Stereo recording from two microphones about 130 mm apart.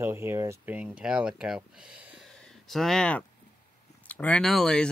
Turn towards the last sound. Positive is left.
turn(degrees=5)  # may be behind; listen again after turning